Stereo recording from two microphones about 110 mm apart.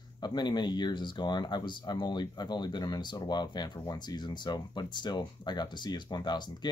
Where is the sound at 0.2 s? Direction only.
40° left (ahead or behind).